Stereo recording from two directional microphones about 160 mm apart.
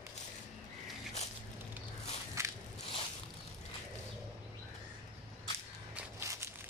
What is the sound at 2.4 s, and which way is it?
Crushing, 20° right (ahead or behind).